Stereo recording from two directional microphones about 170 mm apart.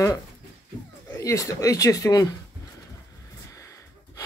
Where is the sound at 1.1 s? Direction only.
20° left (ahead or behind).